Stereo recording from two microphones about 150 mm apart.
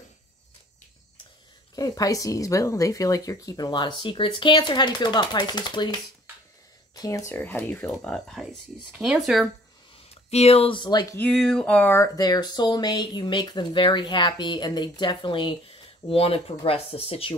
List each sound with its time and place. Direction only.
1.8 s speech: 25° left (ahead or behind)
7.0 s speech: 20° left (ahead or behind); by 9.5 s centre (ahead or behind)
9.9 s speech: 45° left (ahead or behind); by 11.1 s 30° left (ahead or behind)
11.1 s speech: 10° left (ahead or behind)
12.2 s speech: 30° left (ahead or behind)